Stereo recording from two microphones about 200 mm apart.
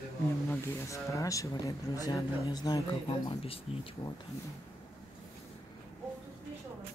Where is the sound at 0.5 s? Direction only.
15° left (ahead or behind).